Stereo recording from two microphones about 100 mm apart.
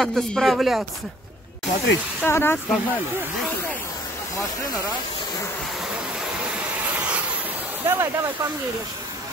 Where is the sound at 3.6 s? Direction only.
20° left (ahead or behind).